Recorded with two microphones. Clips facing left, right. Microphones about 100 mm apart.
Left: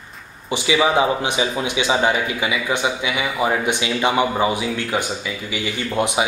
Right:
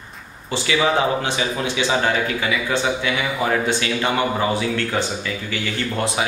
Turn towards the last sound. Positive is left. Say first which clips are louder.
# left 2 dB
turn(degrees=15)  # may be behind; listen again after turning